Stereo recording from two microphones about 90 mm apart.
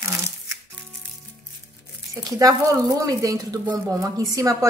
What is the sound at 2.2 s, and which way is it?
A woman's voice, 40° right (ahead or behind).